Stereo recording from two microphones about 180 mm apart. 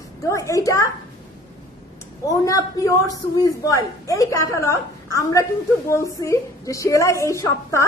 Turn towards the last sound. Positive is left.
turn(degrees=15)  # may be behind; listen again after turning